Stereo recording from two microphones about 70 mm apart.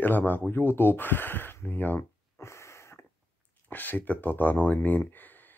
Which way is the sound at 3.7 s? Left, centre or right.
Left.